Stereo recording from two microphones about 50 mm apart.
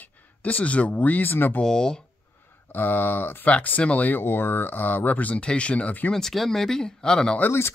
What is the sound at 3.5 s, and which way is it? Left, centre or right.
Speech, left.